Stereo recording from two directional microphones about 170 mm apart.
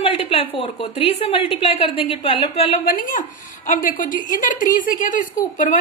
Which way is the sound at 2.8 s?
55° left (ahead or behind).